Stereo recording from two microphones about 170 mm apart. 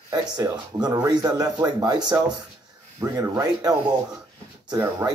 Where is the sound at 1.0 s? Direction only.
20° right (ahead or behind).